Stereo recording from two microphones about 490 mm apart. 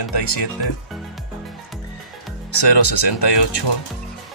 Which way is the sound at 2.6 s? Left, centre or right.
Left.